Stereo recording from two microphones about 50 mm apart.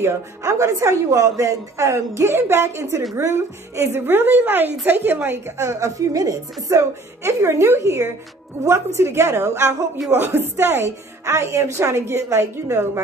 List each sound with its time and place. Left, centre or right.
0.0 s a woman's voice: right
3.8 s a woman's voice: right
5.6 s a woman's voice: right
7.2 s a woman's voice: right
8.6 s a woman's voice: right
10.1 s a woman's voice: right
11.2 s a woman's voice: right